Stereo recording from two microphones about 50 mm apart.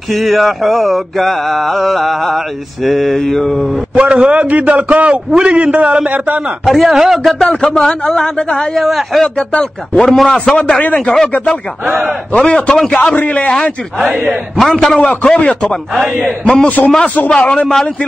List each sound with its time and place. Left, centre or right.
0.1 s mantra: centre
3.9 s a man's voice: right
6.6 s mantra: centre
7.3 s speech: centre
8.8 s mantra: centre
9.6 s speech: centre
10.8 s speech: left
12.3 s speech: centre
14.0 s a man's voice: right
14.6 s speech: centre
15.0 s speech: left
16.6 s a man's voice: left